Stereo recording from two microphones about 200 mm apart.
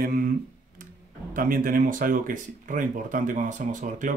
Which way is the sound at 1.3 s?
45° right (ahead or behind).